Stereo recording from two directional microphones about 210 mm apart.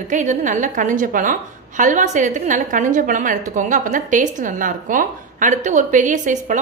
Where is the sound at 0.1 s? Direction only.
35° right (ahead or behind).